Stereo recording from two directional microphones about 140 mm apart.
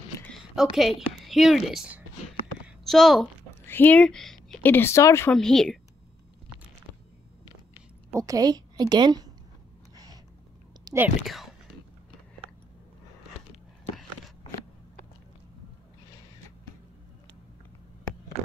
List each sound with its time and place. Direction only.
0.6 s speech: centre (ahead or behind)
2.6 s a sound: centre (ahead or behind)
3.6 s a sound: 15° left (ahead or behind)
4.6 s speech: 15° left (ahead or behind)
5.3 s speech: 5° left (ahead or behind)
8.1 s a woman's voice: 25° right (ahead or behind)
10.9 s whispering: 30° right (ahead or behind)